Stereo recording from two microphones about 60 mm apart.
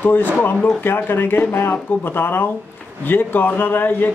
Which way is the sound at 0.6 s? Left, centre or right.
Centre.